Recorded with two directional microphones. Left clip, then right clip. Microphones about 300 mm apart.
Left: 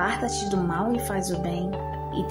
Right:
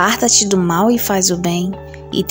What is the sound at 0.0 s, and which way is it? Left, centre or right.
Speech, right.